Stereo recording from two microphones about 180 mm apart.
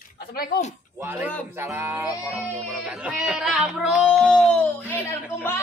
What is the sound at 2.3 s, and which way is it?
Music, centre (ahead or behind).